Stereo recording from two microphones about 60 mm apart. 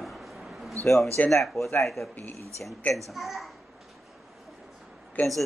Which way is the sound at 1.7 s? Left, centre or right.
Centre.